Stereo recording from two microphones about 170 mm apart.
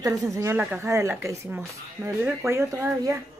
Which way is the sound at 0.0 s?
20° right (ahead or behind).